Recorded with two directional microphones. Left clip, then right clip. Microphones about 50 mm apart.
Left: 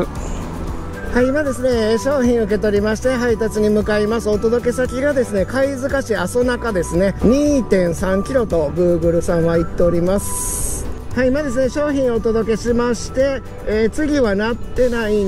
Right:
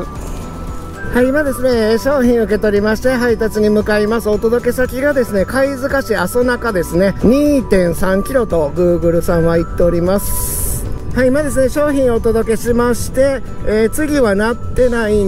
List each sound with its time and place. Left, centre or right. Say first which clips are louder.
1.6 s speech: right 3 dB; right
2.5 s speech: right 3 dB; right
4.8 s speech: right 3 dB; right
5.2 s speech: right 3 dB; right
8.7 s speech: right 2 dB; right
9.2 s speech: right 3 dB; right
11.1 s speech: right 4 dB; right